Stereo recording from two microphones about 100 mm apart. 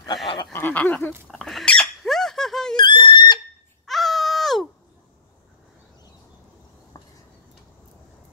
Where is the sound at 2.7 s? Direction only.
55° left (ahead or behind).